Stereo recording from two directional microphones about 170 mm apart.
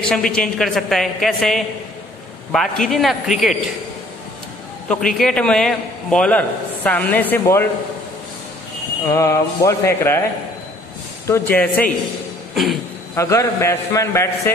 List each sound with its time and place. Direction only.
0.1 s a woman's voice: 5° left (ahead or behind)
4.8 s a man's voice: 5° left (ahead or behind)
9.0 s a man's voice: 20° left (ahead or behind)
11.2 s a man's voice: 15° left (ahead or behind)
13.1 s a man's voice: 15° left (ahead or behind)